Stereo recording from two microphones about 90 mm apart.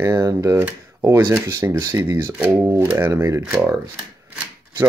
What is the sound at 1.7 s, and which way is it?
Speech, 30° right (ahead or behind).